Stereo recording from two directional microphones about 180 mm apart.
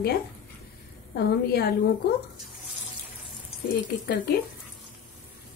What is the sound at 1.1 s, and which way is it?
Speech, 60° left (ahead or behind).